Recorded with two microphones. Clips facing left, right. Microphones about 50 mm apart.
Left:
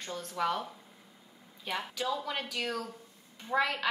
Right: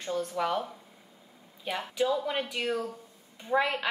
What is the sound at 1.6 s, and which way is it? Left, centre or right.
A woman's voice, centre.